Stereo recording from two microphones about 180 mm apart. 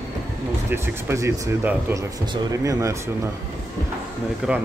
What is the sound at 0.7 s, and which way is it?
Speech, 10° right (ahead or behind).